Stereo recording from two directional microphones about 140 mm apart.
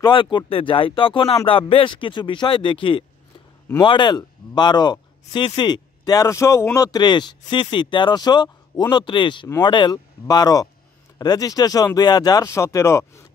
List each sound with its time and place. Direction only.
0.0 s speech: 35° left (ahead or behind)